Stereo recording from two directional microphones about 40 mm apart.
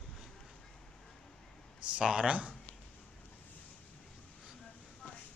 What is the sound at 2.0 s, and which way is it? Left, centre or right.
Speech, right.